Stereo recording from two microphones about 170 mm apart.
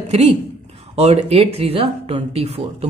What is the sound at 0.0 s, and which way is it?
A woman's voice, 40° right (ahead or behind).